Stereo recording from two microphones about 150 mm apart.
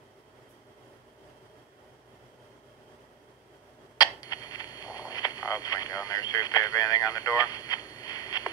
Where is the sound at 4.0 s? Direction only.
25° left (ahead or behind).